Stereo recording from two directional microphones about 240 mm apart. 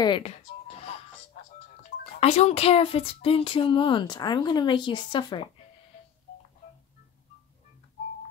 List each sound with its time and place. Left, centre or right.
0.0 s speech: centre
2.1 s speech: left